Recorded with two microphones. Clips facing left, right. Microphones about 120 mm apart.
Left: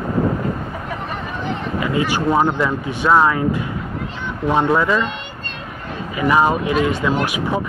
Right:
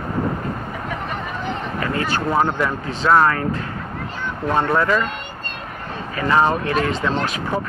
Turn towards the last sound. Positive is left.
turn(degrees=10)  # may be behind; listen again after turning